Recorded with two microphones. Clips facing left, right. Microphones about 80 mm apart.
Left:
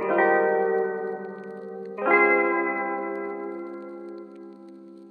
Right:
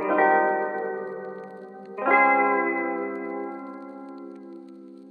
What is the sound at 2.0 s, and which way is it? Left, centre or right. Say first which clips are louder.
Zither: right 1 dB; centre.